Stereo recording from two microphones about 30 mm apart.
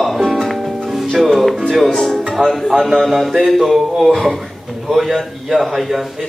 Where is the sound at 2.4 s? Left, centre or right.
Right.